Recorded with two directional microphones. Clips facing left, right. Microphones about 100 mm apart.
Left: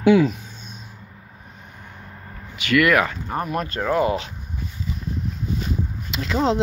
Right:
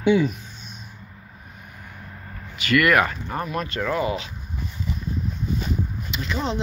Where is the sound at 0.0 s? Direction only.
90° left.